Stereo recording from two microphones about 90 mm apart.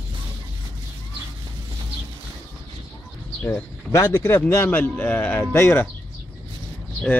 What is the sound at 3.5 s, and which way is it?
Speech, 30° left (ahead or behind).